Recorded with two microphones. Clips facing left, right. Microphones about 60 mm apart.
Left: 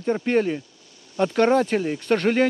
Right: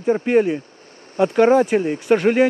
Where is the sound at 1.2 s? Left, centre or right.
Centre.